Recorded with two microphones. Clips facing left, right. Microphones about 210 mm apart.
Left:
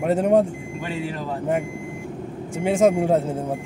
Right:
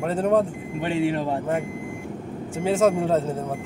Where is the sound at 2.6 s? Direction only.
15° left (ahead or behind).